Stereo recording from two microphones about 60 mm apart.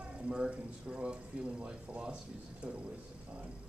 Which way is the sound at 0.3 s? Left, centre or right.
Centre.